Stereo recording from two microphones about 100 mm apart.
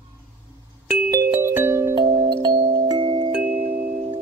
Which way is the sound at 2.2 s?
50° right (ahead or behind).